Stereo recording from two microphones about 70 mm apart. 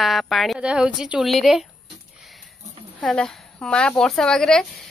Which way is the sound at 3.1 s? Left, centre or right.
Centre.